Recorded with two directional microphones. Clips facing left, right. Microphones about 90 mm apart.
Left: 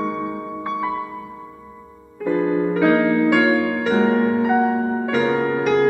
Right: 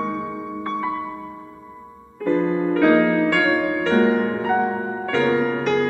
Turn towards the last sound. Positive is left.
turn(degrees=15)  # may be behind; listen again after turning